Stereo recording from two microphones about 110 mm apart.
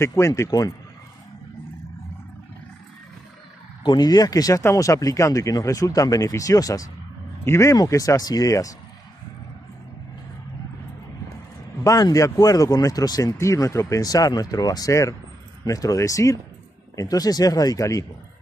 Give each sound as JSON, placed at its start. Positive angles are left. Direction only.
{"t": 0.0, "sound": "speech", "side_deg": 25}
{"t": 3.8, "sound": "speech", "side_deg": 40}
{"t": 11.8, "sound": "speech", "side_deg": 30}